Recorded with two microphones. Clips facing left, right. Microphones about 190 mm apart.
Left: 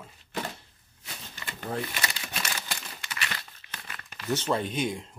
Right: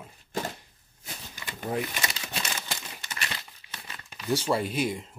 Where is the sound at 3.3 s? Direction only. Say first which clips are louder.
Even; 15° right (ahead or behind).